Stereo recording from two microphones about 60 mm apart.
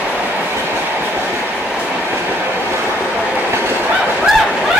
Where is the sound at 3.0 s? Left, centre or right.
Right.